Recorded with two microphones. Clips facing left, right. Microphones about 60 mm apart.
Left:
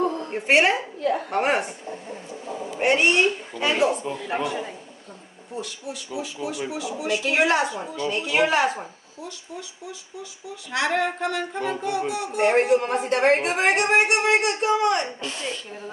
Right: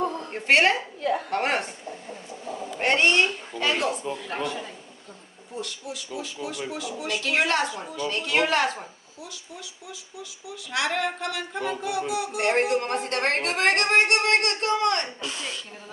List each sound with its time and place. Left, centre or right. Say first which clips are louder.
0.5 s speech: left 1 dB; centre
2.8 s speech: left 2 dB; centre
5.6 s speech: left 1 dB; centre
15.2 s speech: left 3 dB; centre